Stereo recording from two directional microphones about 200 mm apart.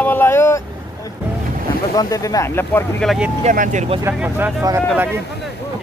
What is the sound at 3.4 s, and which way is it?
Speech, 40° right (ahead or behind).